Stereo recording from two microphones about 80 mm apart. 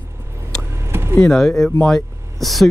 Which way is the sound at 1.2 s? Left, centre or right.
Centre.